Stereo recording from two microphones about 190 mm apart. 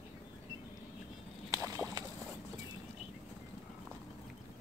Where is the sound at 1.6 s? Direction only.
20° right (ahead or behind).